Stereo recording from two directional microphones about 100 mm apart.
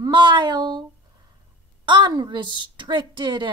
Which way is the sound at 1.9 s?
45° right (ahead or behind).